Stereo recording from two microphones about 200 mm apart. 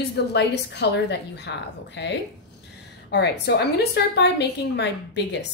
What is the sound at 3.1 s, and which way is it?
A woman's voice, 60° left (ahead or behind).